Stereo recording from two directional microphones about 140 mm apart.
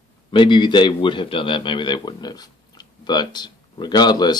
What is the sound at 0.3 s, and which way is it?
A man's voice, 35° left (ahead or behind).